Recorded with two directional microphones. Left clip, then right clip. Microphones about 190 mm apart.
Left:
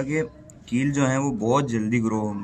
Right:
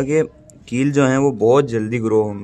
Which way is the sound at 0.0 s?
55° right (ahead or behind).